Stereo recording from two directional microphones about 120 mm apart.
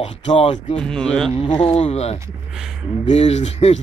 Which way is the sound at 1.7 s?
65° left (ahead or behind).